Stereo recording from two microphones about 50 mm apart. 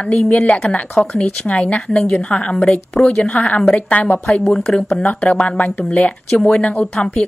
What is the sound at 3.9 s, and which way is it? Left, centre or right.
Speech, left.